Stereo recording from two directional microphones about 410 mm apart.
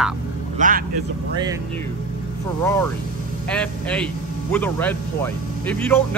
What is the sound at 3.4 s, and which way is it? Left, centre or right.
Speech, centre.